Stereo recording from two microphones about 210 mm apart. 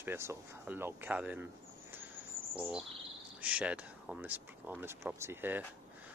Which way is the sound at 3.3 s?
5° right (ahead or behind).